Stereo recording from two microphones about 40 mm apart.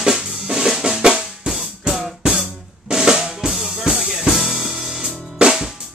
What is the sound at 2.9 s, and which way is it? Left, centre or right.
Drum, centre.